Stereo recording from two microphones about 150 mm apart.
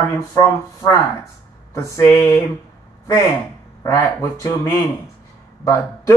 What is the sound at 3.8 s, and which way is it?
Speech, 20° left (ahead or behind).